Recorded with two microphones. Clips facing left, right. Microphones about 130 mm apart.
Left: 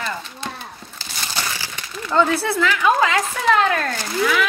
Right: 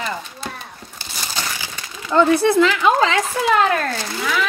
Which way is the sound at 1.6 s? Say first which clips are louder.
Left 1 dB; 15° right (ahead or behind).